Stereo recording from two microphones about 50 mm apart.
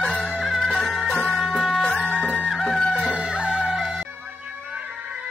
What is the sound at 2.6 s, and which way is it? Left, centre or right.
Music, centre.